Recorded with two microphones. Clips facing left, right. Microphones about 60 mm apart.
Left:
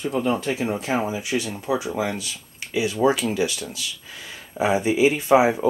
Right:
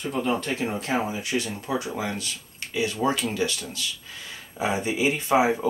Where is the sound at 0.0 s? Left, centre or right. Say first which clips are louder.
Left 3 dB; centre.